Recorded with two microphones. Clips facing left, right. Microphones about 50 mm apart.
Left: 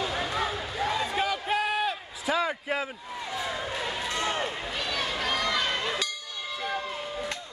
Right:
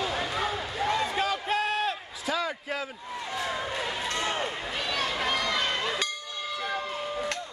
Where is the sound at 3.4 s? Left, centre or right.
Centre.